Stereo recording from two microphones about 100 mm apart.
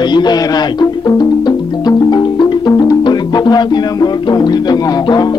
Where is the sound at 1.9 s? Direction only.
45° left (ahead or behind).